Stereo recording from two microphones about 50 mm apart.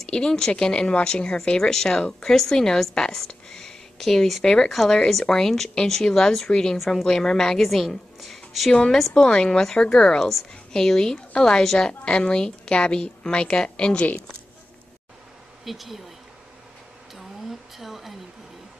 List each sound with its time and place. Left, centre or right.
0.0 s a woman's voice: centre
9.1 s a woman's voice: centre
15.6 s speech: centre
17.1 s a sound: centre